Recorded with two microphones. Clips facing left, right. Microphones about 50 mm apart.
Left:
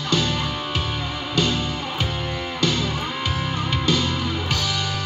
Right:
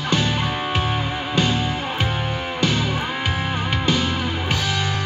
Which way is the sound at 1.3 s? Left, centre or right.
Right.